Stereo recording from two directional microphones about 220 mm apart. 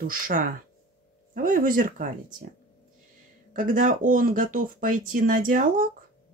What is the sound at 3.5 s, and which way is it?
Speech, 35° right (ahead or behind).